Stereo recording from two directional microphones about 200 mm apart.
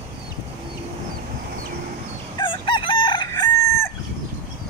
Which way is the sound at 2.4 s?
25° left (ahead or behind).